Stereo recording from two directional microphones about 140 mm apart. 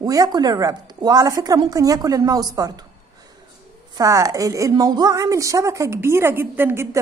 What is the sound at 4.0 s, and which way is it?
A woman's voice, 25° right (ahead or behind).